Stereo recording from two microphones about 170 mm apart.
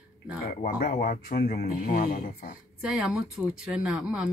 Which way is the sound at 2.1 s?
50° left (ahead or behind).